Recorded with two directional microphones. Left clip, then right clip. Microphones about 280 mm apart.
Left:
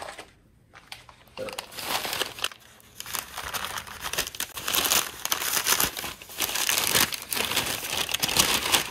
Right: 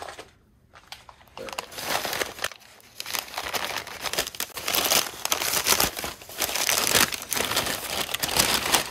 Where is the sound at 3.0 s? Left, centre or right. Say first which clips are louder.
Right 4 dB; right.